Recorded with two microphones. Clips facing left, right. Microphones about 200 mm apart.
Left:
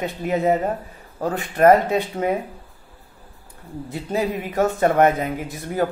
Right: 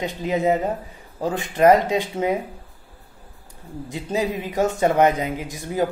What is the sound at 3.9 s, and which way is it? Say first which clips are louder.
Speech: left 1 dB; 15° right (ahead or behind).